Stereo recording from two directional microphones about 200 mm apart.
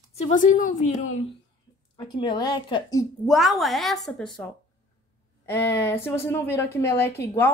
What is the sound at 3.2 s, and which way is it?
A woman's voice, centre (ahead or behind).